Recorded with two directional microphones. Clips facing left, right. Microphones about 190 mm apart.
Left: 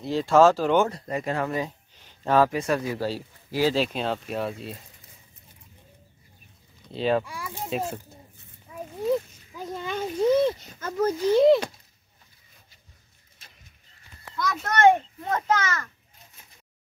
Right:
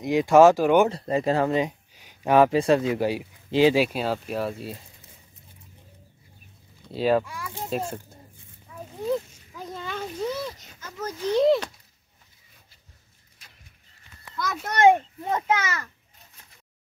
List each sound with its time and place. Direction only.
0.0 s speech: 15° right (ahead or behind)
0.8 s speech: 30° right (ahead or behind)
2.5 s speech: 25° right (ahead or behind); by 4.7 s centre (ahead or behind)
6.9 s speech: 5° right (ahead or behind)
7.2 s speech: 10° left (ahead or behind)
8.7 s a sound: 10° left (ahead or behind)
10.8 s a child's voice: 55° left (ahead or behind)
11.1 s speech: 5° left (ahead or behind)
14.3 s speech: 5° right (ahead or behind)
14.8 s speech: 15° right (ahead or behind)